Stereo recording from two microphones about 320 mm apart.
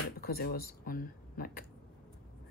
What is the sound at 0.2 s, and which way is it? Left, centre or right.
A woman's voice, left.